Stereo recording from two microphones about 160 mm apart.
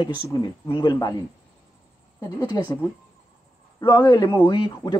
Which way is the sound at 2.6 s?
20° left (ahead or behind).